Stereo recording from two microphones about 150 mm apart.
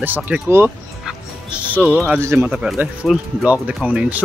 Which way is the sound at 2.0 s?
15° right (ahead or behind).